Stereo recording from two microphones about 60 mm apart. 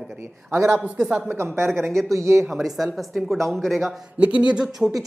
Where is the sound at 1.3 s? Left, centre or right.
Right.